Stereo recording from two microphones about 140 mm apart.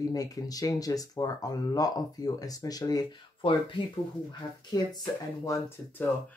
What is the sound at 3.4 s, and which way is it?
Speech, 40° left (ahead or behind).